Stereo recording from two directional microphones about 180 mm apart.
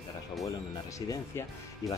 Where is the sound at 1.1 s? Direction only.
20° left (ahead or behind).